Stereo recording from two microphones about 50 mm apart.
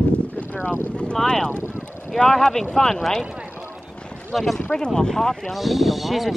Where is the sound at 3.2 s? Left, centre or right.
Centre.